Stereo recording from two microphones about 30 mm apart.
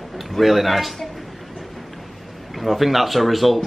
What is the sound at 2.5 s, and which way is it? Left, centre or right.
Speech, centre.